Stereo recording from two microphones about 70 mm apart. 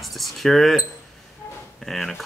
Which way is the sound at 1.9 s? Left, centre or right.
Centre.